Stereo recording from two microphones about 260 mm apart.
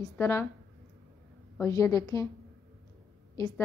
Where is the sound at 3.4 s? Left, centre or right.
Centre.